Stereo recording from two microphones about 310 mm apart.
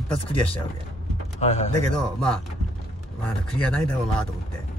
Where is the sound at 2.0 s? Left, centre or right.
Centre.